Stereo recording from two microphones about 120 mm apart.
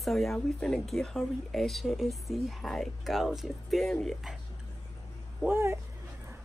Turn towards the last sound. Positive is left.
turn(degrees=-20)  # may be behind; listen again after turning